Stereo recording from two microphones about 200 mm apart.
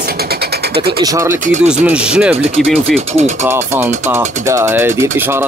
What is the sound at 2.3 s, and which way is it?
Speech, 30° right (ahead or behind).